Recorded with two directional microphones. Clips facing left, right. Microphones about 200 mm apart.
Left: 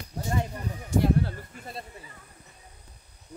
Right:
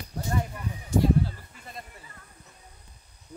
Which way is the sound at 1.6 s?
35° left (ahead or behind).